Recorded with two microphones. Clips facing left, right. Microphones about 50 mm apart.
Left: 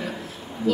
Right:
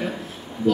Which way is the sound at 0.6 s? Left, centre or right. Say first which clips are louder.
Right 3 dB; right.